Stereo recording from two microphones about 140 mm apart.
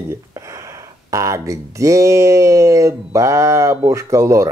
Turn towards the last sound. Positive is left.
turn(degrees=-20)  # may be behind; listen again after turning